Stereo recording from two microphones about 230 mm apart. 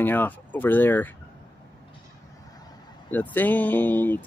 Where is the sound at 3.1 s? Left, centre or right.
Centre.